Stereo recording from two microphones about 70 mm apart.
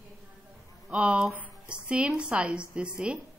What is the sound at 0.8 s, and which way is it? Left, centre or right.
Speech, centre.